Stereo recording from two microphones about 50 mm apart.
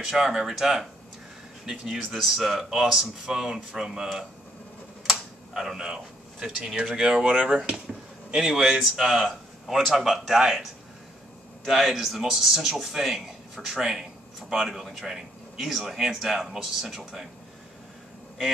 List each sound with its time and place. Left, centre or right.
0.0 s a man's voice: centre
5.1 s a sound: centre
6.4 s a man's voice: centre
8.8 s speech: centre
11.6 s a man's voice: centre